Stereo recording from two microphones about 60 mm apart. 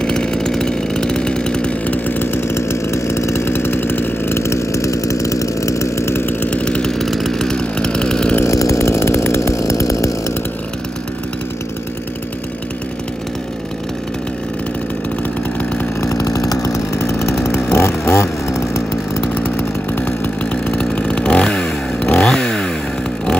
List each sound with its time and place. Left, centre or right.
0.0 s chainsaw: centre; by 4.4 s left
4.4 s chainsaw: left
6.0 s chainsaw: left
6.5 s chainsaw: centre
8.5 s chainsaw: left
16.0 s chainsaw: left
17.0 s chainsaw: left
19.3 s chainsaw: left
20.6 s chainsaw: centre